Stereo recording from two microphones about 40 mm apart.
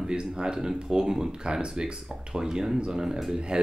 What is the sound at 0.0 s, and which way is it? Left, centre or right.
Speech, right.